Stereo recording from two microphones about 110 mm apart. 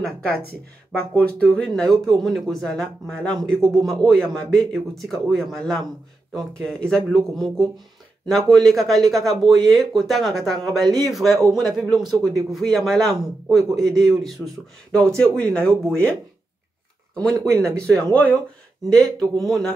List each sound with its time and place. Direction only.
1.1 s speech: 10° left (ahead or behind)
17.5 s speech: 5° left (ahead or behind)